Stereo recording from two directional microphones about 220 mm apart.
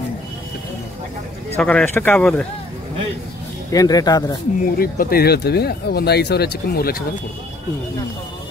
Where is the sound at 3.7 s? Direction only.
15° left (ahead or behind).